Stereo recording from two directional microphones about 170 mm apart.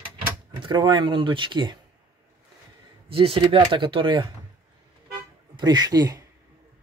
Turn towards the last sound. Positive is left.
turn(degrees=-25)  # may be behind; listen again after turning